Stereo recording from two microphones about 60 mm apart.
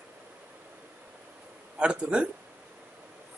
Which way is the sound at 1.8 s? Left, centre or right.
Centre.